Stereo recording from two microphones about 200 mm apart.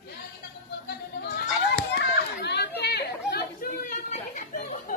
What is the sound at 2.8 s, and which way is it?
Chatter, 55° left (ahead or behind).